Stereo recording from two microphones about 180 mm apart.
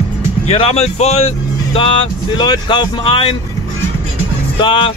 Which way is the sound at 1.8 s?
25° left (ahead or behind).